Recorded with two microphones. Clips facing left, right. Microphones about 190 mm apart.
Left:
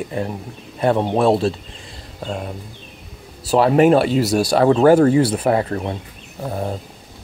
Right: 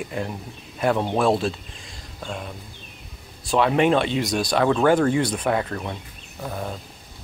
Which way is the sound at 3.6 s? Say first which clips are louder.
Left 6 dB; 40° left (ahead or behind).